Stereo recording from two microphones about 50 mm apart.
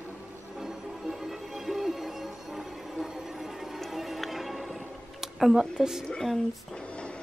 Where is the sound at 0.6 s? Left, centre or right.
Centre.